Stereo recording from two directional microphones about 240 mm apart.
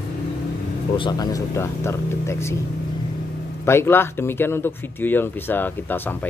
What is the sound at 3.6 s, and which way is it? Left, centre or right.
Speech, centre.